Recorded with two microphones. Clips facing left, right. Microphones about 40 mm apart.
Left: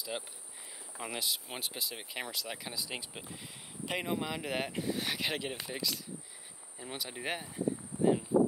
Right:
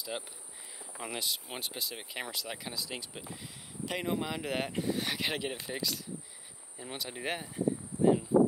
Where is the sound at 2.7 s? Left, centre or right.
Centre.